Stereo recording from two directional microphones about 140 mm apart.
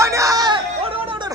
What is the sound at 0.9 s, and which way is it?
Music, 40° right (ahead or behind).